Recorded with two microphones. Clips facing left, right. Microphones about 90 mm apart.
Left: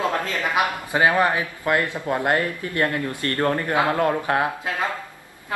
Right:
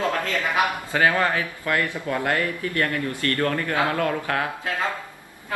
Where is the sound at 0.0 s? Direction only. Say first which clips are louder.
Left 1 dB; 20° left (ahead or behind).